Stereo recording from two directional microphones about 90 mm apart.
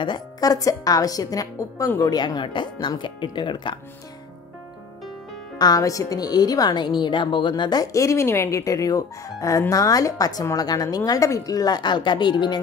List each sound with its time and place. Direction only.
0.0 s a woman's voice: 50° left (ahead or behind)
5.6 s a woman's voice: 45° left (ahead or behind)
7.8 s a woman's voice: 35° left (ahead or behind); by 12.5 s 60° left (ahead or behind)